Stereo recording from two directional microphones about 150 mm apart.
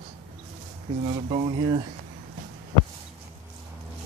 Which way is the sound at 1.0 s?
40° right (ahead or behind).